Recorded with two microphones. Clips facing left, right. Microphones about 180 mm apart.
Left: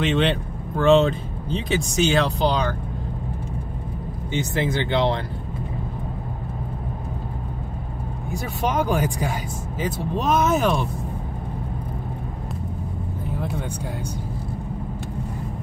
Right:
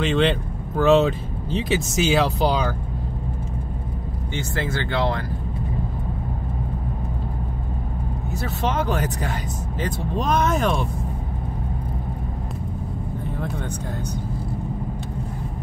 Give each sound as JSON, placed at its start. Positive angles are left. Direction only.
{"t": 0.0, "sound": "speech", "side_deg": 0}
{"t": 4.3, "sound": "speech", "side_deg": 20}
{"t": 8.3, "sound": "speech", "side_deg": 10}